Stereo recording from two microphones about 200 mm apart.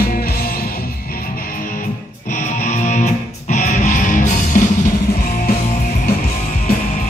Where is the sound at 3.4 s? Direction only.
35° left (ahead or behind).